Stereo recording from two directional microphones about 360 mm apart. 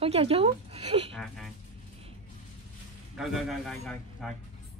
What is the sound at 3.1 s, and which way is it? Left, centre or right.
Speech, centre.